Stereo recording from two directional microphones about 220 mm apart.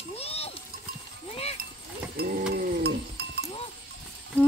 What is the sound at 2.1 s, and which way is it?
Pigeon, 45° right (ahead or behind).